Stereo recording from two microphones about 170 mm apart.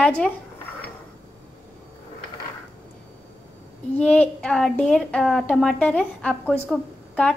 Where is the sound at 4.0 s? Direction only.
5° left (ahead or behind).